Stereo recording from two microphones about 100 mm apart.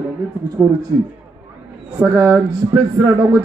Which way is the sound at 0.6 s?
10° right (ahead or behind).